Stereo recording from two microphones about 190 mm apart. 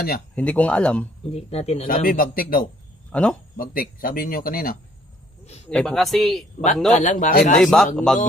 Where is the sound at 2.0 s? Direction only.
50° left (ahead or behind).